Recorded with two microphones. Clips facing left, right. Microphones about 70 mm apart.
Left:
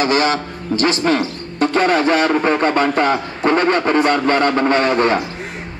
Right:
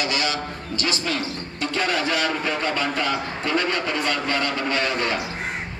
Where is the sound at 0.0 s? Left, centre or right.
Left.